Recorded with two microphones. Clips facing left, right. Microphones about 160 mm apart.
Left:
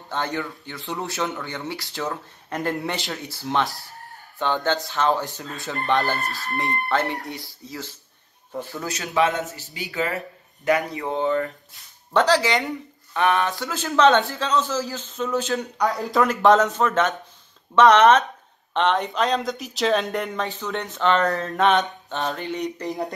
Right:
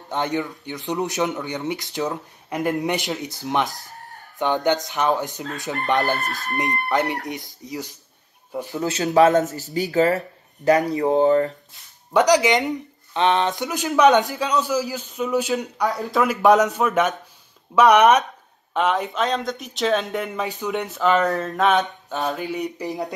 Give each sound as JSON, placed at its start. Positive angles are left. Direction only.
{"t": 0.1, "sound": "speech", "side_deg": -20}
{"t": 8.8, "sound": "a man's voice", "side_deg": -30}
{"t": 12.1, "sound": "speech", "side_deg": -15}
{"t": 15.9, "sound": "speech", "side_deg": 0}